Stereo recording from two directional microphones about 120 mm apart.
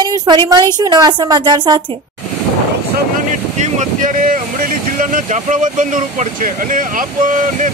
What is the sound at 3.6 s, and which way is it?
Boat, 85° right.